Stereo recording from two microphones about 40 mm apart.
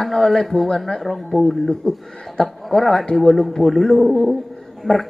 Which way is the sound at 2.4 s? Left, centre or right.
Left.